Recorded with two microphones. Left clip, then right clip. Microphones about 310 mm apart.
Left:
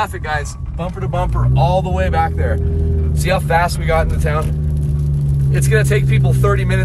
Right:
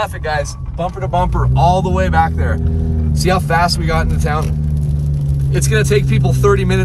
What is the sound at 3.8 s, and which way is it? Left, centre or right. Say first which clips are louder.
Speech: left 1 dB; centre.